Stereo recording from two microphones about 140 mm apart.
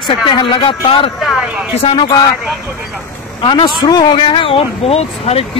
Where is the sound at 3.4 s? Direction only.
35° left (ahead or behind).